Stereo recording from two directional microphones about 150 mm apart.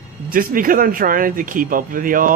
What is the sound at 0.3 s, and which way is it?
Speech, 70° right (ahead or behind).